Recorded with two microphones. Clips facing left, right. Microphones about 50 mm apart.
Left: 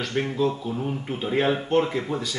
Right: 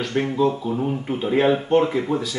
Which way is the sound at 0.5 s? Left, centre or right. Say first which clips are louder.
Right 5 dB; right.